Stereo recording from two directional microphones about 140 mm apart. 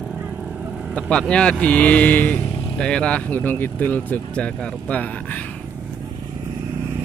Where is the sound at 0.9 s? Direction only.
5° left (ahead or behind).